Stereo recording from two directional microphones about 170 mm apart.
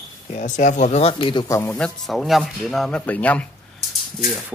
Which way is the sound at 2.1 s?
Centre (ahead or behind).